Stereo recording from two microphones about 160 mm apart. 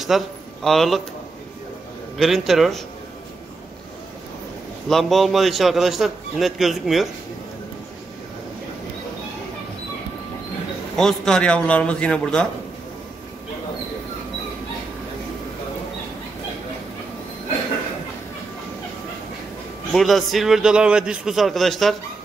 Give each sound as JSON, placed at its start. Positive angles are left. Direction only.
{"t": 0.0, "sound": "a man's voice", "side_deg": 0}
{"t": 2.1, "sound": "a man's voice", "side_deg": 0}
{"t": 4.8, "sound": "a man's voice", "side_deg": 0}
{"t": 11.0, "sound": "a man's voice", "side_deg": 5}
{"t": 19.9, "sound": "a man's voice", "side_deg": 0}